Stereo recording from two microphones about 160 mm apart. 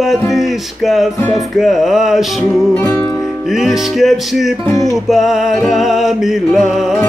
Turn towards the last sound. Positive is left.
turn(degrees=0)  # may be behind; listen again after turning